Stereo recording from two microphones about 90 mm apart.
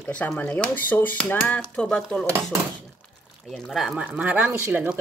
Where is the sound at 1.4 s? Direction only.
15° left (ahead or behind).